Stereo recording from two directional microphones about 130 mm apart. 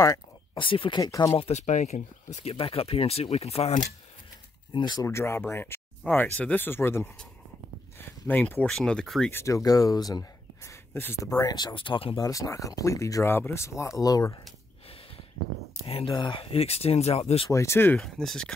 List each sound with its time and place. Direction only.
0.0 s a sound: 30° left (ahead or behind)
0.7 s speech: 40° left (ahead or behind)
1.3 s speech: 50° left (ahead or behind)
1.6 s speech: 65° left (ahead or behind)
4.7 s speech: 35° left (ahead or behind)
5.0 s speech: 20° left (ahead or behind); by 9.3 s 5° left (ahead or behind)
9.3 s speech: 20° left (ahead or behind)
11.2 s speech: 30° left (ahead or behind)
12.2 s speech: 25° left (ahead or behind)
15.9 s speech: 45° left (ahead or behind)
17.5 s speech: 20° left (ahead or behind)
17.9 s speech: 5° left (ahead or behind)